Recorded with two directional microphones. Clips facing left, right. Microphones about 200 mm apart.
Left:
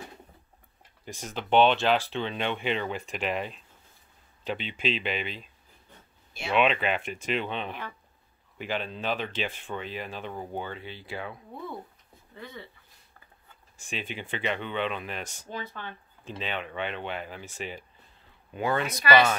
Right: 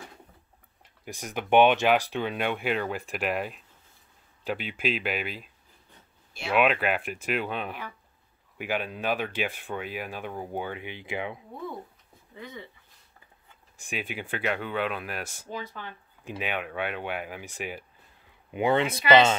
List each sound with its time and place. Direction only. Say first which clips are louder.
1.0 s speech: right 2 dB; 10° right (ahead or behind)
12.4 s speech: right 1 dB; 15° right (ahead or behind)
13.7 s speech: right 2 dB; 10° right (ahead or behind)